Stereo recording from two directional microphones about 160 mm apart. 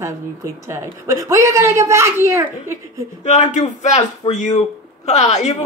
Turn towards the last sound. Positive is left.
turn(degrees=45)  # may be behind; listen again after turning